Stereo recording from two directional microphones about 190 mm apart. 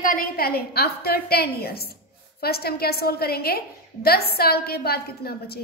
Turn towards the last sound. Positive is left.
turn(degrees=55)  # may be behind; listen again after turning